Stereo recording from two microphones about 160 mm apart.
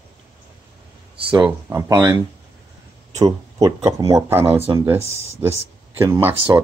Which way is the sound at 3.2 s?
25° right (ahead or behind).